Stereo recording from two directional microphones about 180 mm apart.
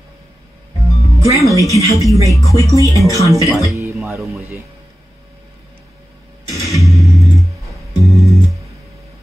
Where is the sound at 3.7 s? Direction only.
15° right (ahead or behind).